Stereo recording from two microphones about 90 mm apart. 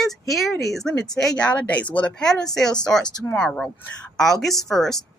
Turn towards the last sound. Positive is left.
turn(degrees=5)  # may be behind; listen again after turning